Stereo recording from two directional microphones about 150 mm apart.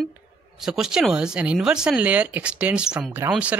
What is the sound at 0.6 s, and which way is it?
Speech, 5° right (ahead or behind).